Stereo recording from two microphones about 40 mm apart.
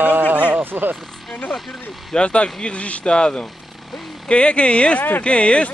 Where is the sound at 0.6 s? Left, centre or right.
Right.